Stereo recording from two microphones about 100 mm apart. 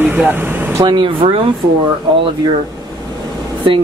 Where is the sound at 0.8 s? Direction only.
55° right (ahead or behind).